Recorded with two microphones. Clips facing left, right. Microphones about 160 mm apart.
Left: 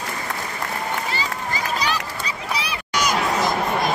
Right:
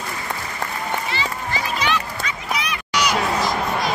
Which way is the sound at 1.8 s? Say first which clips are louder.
Right 2 dB; 35° left (ahead or behind).